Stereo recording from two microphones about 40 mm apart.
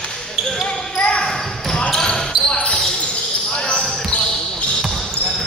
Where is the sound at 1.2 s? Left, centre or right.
Centre.